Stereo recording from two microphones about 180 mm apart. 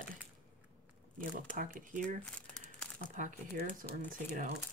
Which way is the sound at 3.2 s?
45° right (ahead or behind).